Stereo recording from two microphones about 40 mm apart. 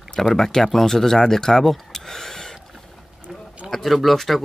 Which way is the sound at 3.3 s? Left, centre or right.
Centre.